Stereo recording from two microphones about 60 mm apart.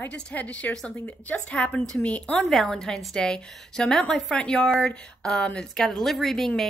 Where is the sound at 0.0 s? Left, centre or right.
Left.